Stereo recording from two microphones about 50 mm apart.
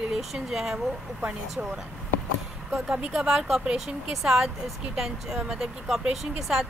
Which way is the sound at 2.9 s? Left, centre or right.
Centre.